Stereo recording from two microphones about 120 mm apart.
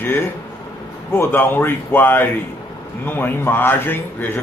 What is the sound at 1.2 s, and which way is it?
Speech, 15° left (ahead or behind).